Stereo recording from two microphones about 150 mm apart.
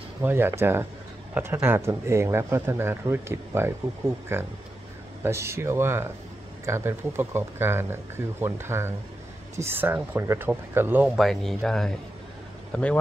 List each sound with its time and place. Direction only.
0.2 s speech: 15° right (ahead or behind)
11.1 s speech: centre (ahead or behind)